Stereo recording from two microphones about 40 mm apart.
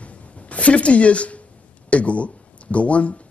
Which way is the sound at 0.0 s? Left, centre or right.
Left.